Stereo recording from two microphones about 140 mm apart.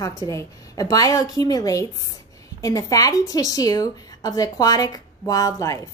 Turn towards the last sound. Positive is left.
turn(degrees=25)  # may be behind; listen again after turning